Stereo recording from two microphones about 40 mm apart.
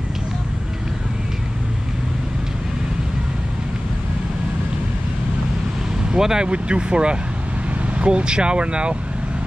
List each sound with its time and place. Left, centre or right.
6.0 s speech: centre
6.5 s speech: right